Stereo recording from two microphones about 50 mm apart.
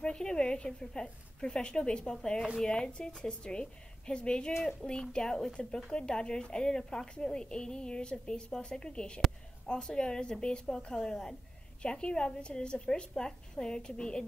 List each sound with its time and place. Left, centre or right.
0.0 s a woman's voice: centre